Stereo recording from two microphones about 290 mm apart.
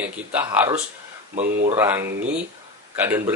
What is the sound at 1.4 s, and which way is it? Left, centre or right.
Speech, right.